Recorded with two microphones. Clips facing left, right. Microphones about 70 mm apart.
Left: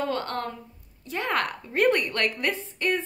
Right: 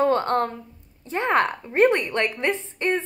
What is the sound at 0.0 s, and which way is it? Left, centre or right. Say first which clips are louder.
A woman's voice: right 8 dB; right.